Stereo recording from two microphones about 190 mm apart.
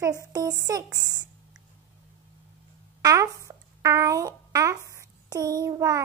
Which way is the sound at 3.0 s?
15° right (ahead or behind).